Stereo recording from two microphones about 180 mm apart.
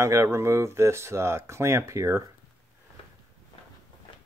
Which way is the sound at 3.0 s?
30° left (ahead or behind).